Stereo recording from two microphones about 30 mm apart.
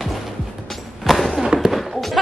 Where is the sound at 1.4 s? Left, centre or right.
Right.